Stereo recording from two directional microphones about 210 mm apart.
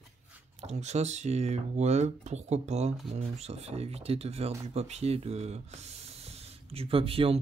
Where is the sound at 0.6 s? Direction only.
30° right (ahead or behind).